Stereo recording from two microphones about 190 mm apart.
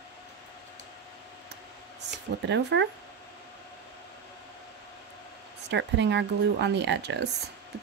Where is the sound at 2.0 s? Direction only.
65° right (ahead or behind).